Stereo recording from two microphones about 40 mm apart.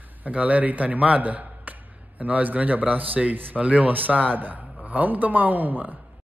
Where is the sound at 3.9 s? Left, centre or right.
Right.